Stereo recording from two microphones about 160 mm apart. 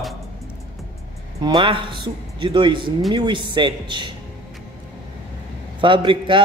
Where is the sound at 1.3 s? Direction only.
30° right (ahead or behind).